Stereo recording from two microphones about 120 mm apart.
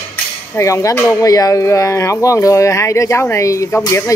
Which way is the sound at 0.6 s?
25° left (ahead or behind).